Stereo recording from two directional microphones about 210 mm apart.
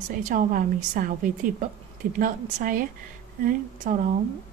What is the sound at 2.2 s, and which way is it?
Speech, 40° right (ahead or behind).